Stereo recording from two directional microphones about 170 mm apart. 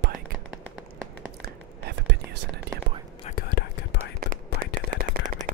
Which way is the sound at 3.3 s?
70° left (ahead or behind).